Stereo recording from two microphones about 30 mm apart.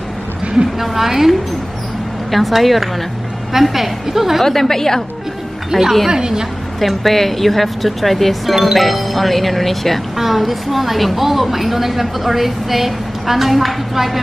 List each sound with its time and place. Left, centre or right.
0.7 s a woman's voice: centre
2.3 s a woman's voice: centre
4.4 s a woman's voice: centre
5.7 s a woman's voice: centre
7.0 s a woman's voice: centre